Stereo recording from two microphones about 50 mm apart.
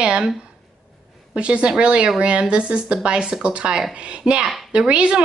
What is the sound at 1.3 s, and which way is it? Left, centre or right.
A woman's voice, right.